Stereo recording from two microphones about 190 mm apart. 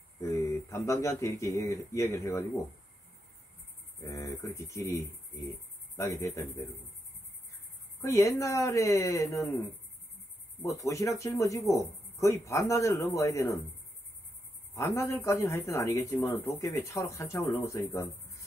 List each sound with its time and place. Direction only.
0.2 s speech: 15° left (ahead or behind)
4.0 s speech: 15° left (ahead or behind)
8.0 s speech: 15° left (ahead or behind)
10.6 s speech: 15° left (ahead or behind)
14.7 s speech: 15° left (ahead or behind)